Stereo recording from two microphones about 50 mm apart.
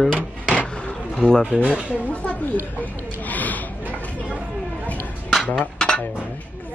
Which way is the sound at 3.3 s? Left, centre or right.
Left.